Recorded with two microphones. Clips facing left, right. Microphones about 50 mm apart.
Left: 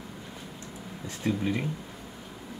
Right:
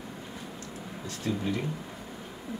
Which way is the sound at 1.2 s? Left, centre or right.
Left.